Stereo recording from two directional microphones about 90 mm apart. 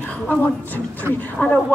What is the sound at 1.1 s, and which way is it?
Speech, 25° right (ahead or behind).